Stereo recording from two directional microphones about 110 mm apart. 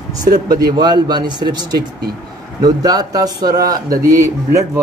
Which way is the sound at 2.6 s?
35° right (ahead or behind).